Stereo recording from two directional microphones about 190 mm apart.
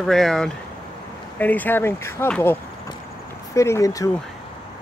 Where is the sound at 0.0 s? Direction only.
Centre (ahead or behind); by 4.1 s 15° left (ahead or behind).